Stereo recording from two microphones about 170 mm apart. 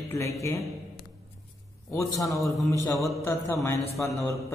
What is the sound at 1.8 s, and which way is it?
A man's voice, 15° left (ahead or behind).